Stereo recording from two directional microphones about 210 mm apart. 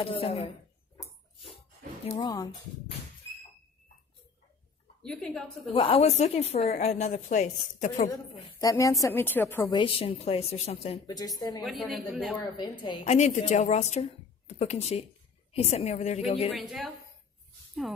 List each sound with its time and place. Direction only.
0.0 s a woman's voice: 25° left (ahead or behind)
2.0 s a woman's voice: 20° left (ahead or behind)
5.0 s a woman's voice: 5° left (ahead or behind)
5.7 s a woman's voice: 25° left (ahead or behind)
8.1 s a woman's voice: 20° left (ahead or behind)
11.6 s a woman's voice: centre (ahead or behind)
12.8 s a woman's voice: 25° left (ahead or behind)
16.5 s a woman's voice: centre (ahead or behind)